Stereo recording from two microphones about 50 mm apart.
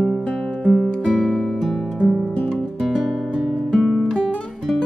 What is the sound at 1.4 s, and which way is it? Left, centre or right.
Music, centre.